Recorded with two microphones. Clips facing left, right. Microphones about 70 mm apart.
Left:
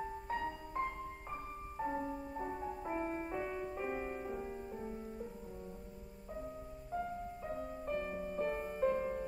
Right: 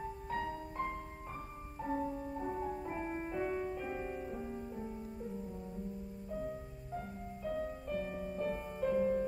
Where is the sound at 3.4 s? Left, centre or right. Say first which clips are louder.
Right 4 dB; right.